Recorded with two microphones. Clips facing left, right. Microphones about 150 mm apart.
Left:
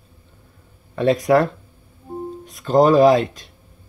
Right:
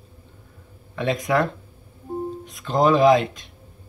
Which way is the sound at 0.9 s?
40° left (ahead or behind).